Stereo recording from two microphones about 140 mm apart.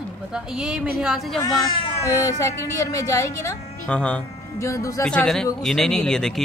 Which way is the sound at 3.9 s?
10° left (ahead or behind).